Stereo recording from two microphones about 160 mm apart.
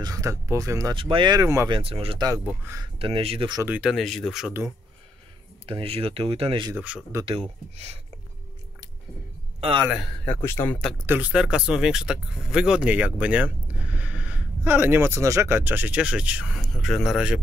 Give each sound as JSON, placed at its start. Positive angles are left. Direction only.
{"t": 0.0, "sound": "speech", "side_deg": -20}
{"t": 0.9, "sound": "speech", "side_deg": -35}
{"t": 1.7, "sound": "speech", "side_deg": -35}
{"t": 2.4, "sound": "speech", "side_deg": -15}
{"t": 2.8, "sound": "speech", "side_deg": -35}
{"t": 3.6, "sound": "speech", "side_deg": -5}
{"t": 5.7, "sound": "speech", "side_deg": -35}
{"t": 6.7, "sound": "speech", "side_deg": -10}
{"t": 7.2, "sound": "speech", "side_deg": -35}
{"t": 9.6, "sound": "speech", "side_deg": -35}
{"t": 10.2, "sound": "speech", "side_deg": 15}
{"t": 11.1, "sound": "speech", "side_deg": -5}